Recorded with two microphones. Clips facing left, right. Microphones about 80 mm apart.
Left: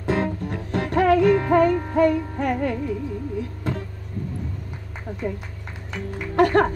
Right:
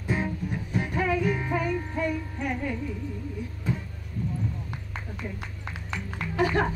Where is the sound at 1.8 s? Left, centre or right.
Left.